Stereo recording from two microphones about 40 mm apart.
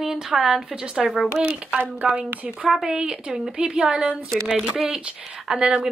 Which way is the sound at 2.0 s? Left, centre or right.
Right.